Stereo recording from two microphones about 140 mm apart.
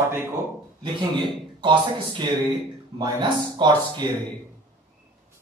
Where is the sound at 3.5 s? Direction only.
30° right (ahead or behind).